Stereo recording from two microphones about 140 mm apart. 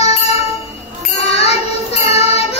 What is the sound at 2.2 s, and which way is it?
Child singing, 50° left (ahead or behind).